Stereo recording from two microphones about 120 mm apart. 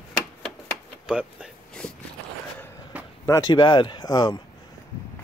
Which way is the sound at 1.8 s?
5° left (ahead or behind).